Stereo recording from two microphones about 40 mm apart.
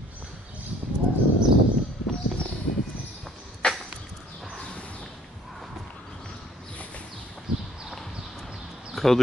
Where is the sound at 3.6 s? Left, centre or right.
Left.